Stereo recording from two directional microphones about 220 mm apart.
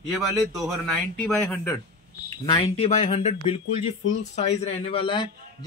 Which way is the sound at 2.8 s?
30° left (ahead or behind).